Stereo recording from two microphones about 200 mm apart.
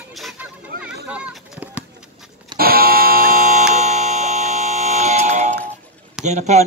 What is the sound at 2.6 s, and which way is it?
Buzzer, 50° right (ahead or behind).